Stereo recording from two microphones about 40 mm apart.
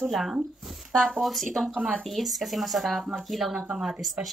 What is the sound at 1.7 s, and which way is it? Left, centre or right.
Speech, right.